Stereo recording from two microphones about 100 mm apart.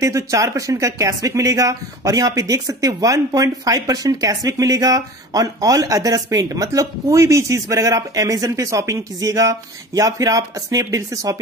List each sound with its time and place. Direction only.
0.0 s speech: 30° right (ahead or behind)